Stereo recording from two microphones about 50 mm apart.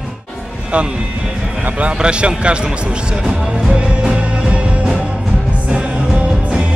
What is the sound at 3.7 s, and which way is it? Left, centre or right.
Music, centre.